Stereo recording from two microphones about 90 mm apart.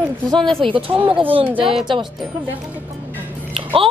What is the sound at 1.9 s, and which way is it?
Speech, 70° right (ahead or behind).